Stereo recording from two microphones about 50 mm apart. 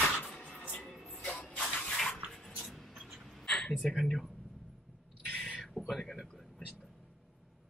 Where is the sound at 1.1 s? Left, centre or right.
Left.